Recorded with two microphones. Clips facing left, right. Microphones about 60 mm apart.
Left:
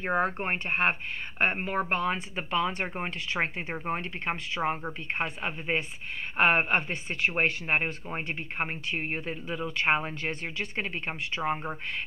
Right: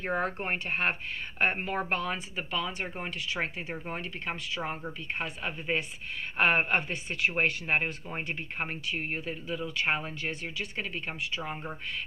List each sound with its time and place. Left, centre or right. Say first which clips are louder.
0.0 s speech: left 3 dB; left